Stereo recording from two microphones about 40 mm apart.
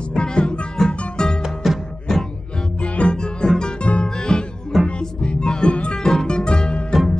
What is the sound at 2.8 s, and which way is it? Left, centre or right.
Music, left.